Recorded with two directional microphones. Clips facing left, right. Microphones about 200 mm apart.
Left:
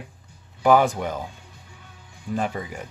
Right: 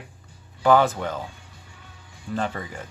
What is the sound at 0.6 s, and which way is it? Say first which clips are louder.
Speech: left 1 dB; 15° left (ahead or behind).